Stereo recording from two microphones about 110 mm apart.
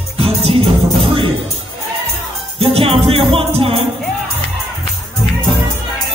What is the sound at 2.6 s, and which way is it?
Music, 60° right (ahead or behind).